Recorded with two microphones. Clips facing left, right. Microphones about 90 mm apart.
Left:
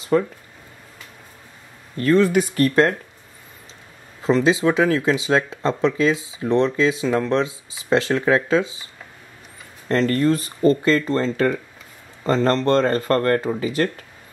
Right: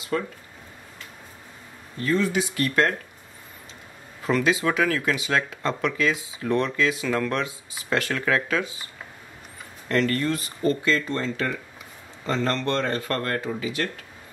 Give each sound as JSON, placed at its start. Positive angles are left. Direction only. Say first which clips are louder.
{"t": 2.0, "sound": "speech", "louder": "left 7 dB", "side_deg": 60}
{"t": 4.2, "sound": "speech", "louder": "left 5 dB", "side_deg": 25}
{"t": 9.8, "sound": "speech", "louder": "left 5 dB", "side_deg": 35}